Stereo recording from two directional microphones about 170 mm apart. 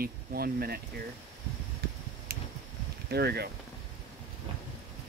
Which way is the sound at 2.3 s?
65° right (ahead or behind).